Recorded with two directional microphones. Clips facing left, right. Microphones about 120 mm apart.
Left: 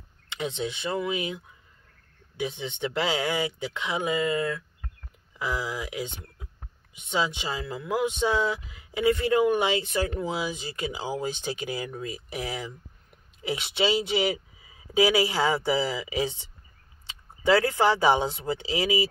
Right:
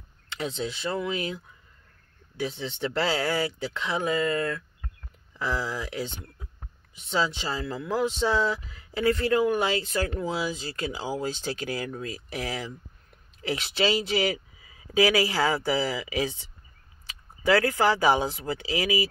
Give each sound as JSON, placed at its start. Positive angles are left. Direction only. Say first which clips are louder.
{"t": 0.3, "sound": "speech", "louder": "left 1 dB", "side_deg": 20}